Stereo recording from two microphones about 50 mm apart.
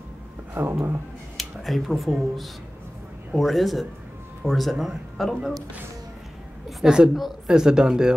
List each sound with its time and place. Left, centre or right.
0.6 s speech: right
1.3 s speech: centre
6.8 s a woman's voice: centre
7.2 s speech: centre
7.5 s speech: centre